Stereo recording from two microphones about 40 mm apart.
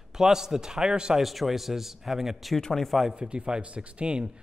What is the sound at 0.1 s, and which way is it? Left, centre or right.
A man's voice, centre.